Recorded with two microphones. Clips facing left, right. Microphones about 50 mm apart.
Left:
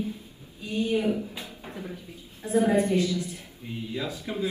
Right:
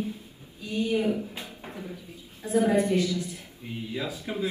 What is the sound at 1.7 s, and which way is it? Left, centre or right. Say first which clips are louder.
Speech: left 2 dB; left.